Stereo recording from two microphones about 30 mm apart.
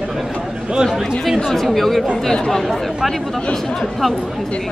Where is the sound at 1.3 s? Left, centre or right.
Centre.